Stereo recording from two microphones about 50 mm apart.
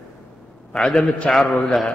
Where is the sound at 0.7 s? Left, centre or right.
Centre.